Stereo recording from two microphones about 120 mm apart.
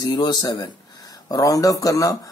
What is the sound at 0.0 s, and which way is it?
Speech, 35° left (ahead or behind).